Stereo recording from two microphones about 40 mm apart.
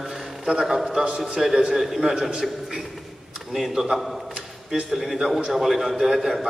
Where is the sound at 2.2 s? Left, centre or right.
Centre.